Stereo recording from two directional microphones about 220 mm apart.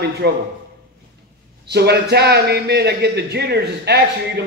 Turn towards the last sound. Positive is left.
turn(degrees=-50)  # may be behind; listen again after turning